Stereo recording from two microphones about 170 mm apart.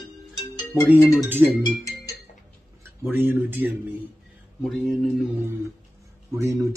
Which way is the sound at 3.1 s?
15° right (ahead or behind).